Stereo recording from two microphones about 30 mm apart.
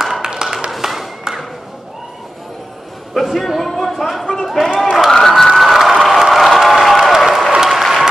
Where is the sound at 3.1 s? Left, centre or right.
Centre.